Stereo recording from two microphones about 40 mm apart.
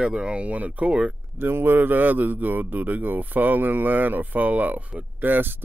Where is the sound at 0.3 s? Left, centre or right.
Right.